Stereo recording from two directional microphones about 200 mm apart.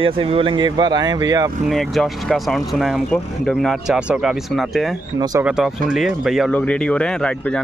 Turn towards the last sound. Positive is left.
turn(degrees=5)  # may be behind; listen again after turning